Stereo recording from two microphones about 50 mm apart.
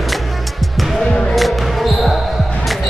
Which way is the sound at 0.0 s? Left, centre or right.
Centre.